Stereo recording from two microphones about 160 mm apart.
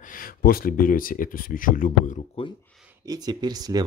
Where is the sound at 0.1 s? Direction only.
65° left (ahead or behind).